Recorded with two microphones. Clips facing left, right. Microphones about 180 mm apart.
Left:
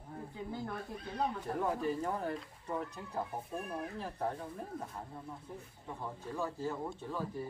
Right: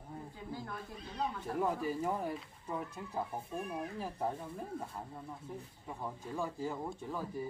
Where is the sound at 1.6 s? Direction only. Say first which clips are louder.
Right 1 dB; 10° right (ahead or behind).